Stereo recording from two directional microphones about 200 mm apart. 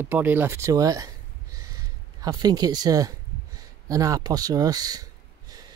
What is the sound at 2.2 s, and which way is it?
Speech, 20° right (ahead or behind).